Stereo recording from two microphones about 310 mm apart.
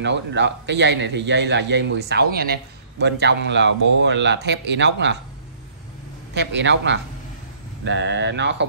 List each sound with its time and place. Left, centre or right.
0.0 s a man's voice: right
6.3 s a man's voice: right